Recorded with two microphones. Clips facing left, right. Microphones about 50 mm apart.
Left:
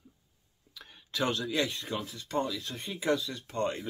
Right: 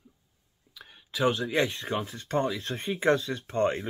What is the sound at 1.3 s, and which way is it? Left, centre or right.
Speech, right.